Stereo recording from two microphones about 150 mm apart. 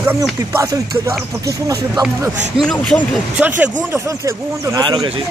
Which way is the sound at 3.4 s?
15° right (ahead or behind).